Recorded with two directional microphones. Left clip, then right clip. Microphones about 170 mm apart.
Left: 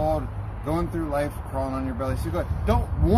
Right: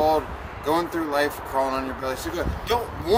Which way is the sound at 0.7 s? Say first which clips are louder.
Right 4 dB; 5° right (ahead or behind).